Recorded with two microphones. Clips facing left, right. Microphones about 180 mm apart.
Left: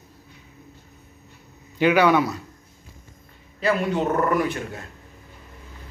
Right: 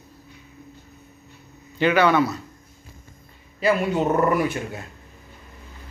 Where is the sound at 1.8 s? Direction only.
10° left (ahead or behind).